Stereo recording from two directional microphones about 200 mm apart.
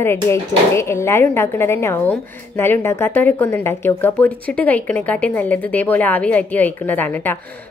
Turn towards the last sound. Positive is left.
turn(degrees=10)  # may be behind; listen again after turning